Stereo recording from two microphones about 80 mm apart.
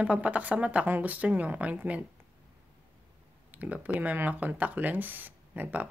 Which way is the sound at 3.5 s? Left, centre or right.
Centre.